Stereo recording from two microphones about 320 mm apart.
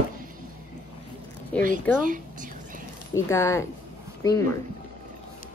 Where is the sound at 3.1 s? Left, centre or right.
Centre.